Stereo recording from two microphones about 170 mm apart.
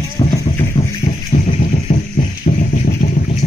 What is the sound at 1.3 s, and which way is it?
Music, 50° left (ahead or behind).